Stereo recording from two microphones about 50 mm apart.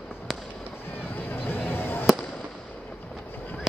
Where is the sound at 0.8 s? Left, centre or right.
Left.